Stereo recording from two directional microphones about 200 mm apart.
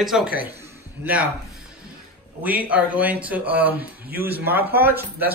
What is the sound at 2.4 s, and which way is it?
Speech, 10° right (ahead or behind).